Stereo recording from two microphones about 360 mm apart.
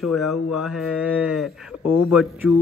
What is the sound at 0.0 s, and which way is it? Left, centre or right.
Speech, centre.